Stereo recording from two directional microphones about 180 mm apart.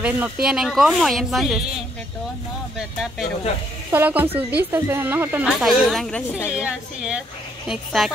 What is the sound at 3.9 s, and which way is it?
Speech, 10° right (ahead or behind).